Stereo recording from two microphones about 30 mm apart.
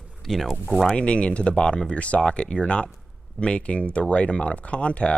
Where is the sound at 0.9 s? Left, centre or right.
Left.